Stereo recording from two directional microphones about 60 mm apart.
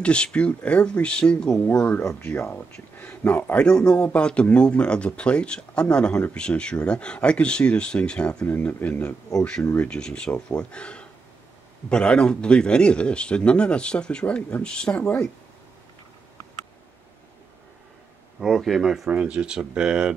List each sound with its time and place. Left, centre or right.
0.0 s speech: centre
2.0 s speech: left
2.7 s speech: left
18.4 s speech: centre
19.0 s speech: centre